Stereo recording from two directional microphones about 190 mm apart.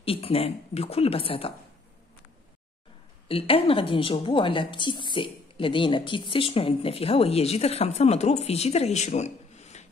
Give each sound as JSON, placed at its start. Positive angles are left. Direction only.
{"t": 0.0, "sound": "speech", "side_deg": 30}
{"t": 3.3, "sound": "speech", "side_deg": 30}